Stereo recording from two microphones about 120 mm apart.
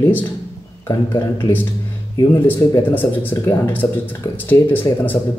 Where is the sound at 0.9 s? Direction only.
20° left (ahead or behind).